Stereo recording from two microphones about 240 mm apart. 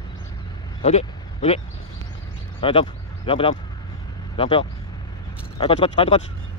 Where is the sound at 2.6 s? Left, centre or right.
Left.